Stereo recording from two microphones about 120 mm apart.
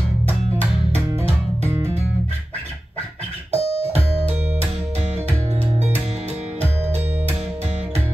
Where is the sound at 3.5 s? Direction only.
60° right (ahead or behind).